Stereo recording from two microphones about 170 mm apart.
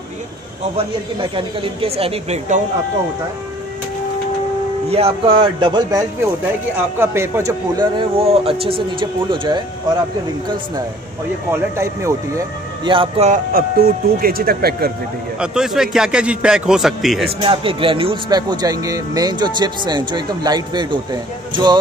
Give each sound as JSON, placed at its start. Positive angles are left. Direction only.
{"t": 1.3, "sound": "speech", "side_deg": -35}
{"t": 4.8, "sound": "speech", "side_deg": -35}
{"t": 8.2, "sound": "speech", "side_deg": -35}
{"t": 11.5, "sound": "speech", "side_deg": -15}
{"t": 12.9, "sound": "speech", "side_deg": -30}
{"t": 13.3, "sound": "speech", "side_deg": -60}
{"t": 15.3, "sound": "a man's voice", "side_deg": -5}
{"t": 17.4, "sound": "speech", "side_deg": -30}